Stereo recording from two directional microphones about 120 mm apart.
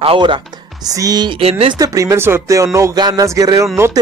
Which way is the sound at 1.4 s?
55° right (ahead or behind).